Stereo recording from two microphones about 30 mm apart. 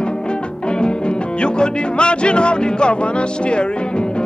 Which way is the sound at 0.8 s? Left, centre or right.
Left.